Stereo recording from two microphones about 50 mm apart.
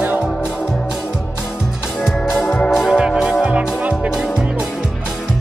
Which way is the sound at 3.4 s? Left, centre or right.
Right.